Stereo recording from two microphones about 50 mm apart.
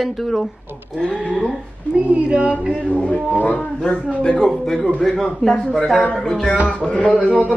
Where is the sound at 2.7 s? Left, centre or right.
Left.